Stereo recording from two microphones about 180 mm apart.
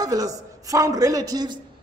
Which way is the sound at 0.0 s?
20° right (ahead or behind).